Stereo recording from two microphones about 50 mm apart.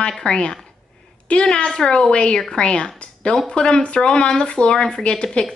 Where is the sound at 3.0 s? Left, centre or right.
Centre.